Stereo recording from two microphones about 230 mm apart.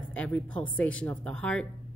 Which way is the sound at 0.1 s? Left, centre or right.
Centre.